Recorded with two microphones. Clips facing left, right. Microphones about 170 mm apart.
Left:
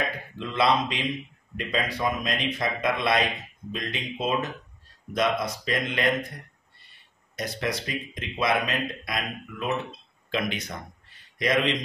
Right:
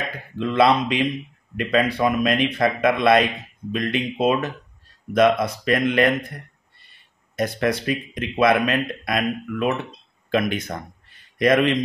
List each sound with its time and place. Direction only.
0.4 s speech: 60° right (ahead or behind)
7.3 s speech: 55° right (ahead or behind)